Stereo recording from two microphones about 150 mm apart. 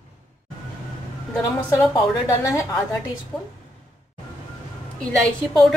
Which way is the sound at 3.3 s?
Centre (ahead or behind).